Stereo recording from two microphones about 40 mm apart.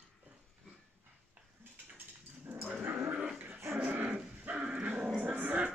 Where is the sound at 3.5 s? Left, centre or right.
Right.